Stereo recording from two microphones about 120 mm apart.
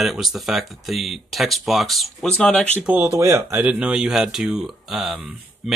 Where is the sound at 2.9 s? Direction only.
20° right (ahead or behind).